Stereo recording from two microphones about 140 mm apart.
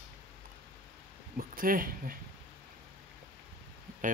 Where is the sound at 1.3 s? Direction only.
85° right.